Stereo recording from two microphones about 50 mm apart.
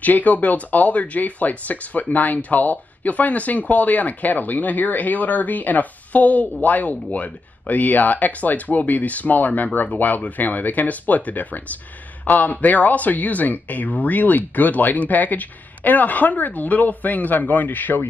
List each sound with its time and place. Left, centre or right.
0.0 s speech: left